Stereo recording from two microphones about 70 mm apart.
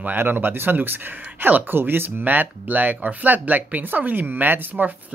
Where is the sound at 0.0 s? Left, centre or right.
Right.